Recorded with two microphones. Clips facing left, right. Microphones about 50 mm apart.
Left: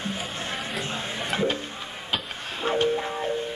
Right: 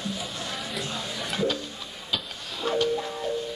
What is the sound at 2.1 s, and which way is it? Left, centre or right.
Music, left.